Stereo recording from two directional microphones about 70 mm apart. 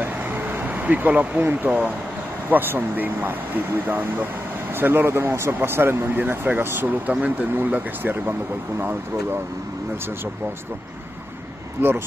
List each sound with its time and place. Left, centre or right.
0.0 s vehicle: right
2.5 s speech: right
11.8 s speech: right